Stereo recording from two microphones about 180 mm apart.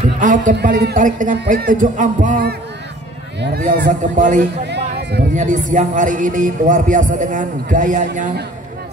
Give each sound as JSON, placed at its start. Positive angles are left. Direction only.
{"t": 0.2, "sound": "a man's voice", "side_deg": -45}
{"t": 0.6, "sound": "speech", "side_deg": -65}
{"t": 0.9, "sound": "a man's voice", "side_deg": -45}
{"t": 3.6, "sound": "a man's voice", "side_deg": -50}
{"t": 4.6, "sound": "music", "side_deg": -70}
{"t": 5.3, "sound": "a man's voice", "side_deg": -45}